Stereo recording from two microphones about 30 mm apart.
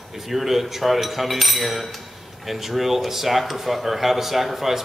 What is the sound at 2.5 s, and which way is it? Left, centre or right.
Speech, centre.